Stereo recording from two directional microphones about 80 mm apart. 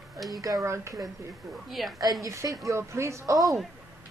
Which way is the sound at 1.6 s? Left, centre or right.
Centre.